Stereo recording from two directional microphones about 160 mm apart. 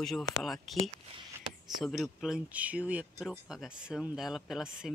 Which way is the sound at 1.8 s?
Centre (ahead or behind).